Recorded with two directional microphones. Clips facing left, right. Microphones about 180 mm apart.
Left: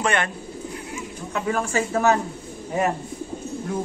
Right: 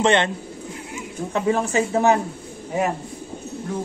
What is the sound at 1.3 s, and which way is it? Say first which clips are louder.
Speech: right 3 dB; 25° right (ahead or behind).